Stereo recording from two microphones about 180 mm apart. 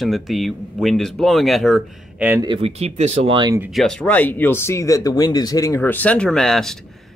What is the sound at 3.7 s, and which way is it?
Speech, 5° left (ahead or behind).